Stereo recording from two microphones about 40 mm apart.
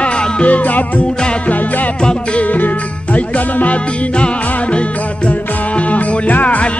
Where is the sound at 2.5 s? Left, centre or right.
Left.